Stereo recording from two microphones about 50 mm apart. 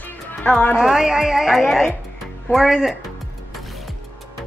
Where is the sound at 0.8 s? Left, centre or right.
Centre.